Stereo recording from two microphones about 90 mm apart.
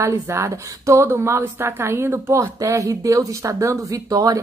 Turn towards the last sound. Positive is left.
turn(degrees=-40)  # may be behind; listen again after turning